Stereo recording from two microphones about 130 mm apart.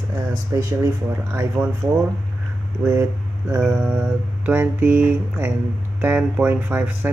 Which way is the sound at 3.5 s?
15° right (ahead or behind).